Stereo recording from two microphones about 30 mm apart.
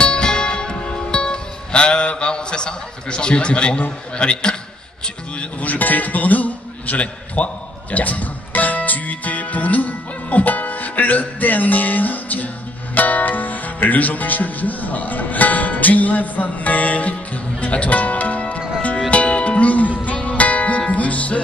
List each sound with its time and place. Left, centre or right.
0.0 s music: left
4.2 s a man's voice: left
5.6 s a man's voice: left
7.0 s speech: left
19.0 s music: left